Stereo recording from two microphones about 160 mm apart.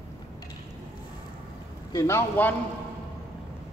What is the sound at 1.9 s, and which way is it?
Speech, 15° left (ahead or behind).